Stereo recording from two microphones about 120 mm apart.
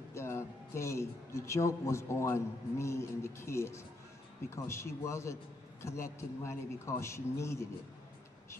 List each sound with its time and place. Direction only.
0.1 s a man's voice: 20° left (ahead or behind)